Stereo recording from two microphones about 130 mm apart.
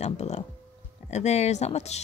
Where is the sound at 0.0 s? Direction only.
55° left (ahead or behind).